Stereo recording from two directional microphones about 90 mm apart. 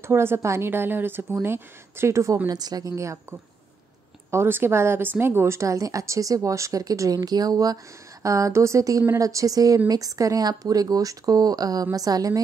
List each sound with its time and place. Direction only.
0.0 s a woman's voice: 25° right (ahead or behind); by 12.4 s 45° right (ahead or behind)